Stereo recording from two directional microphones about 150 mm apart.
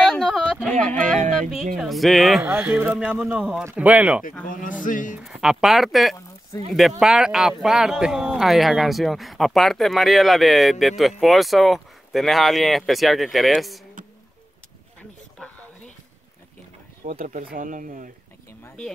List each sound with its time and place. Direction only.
0.0 s a sound: 5° left (ahead or behind)
1.4 s speech: centre (ahead or behind)
2.4 s speech: 10° right (ahead or behind)
4.5 s a man's voice: 60° left (ahead or behind)
5.1 s speech: 5° right (ahead or behind)
14.0 s a sound: 60° right (ahead or behind)
17.1 s speech: 70° right (ahead or behind)